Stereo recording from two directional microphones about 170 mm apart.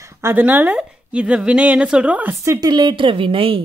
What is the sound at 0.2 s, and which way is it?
A woman's voice, 10° right (ahead or behind).